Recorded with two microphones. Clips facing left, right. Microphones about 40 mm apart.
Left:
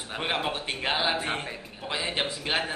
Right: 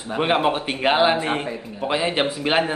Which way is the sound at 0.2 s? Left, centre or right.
Right.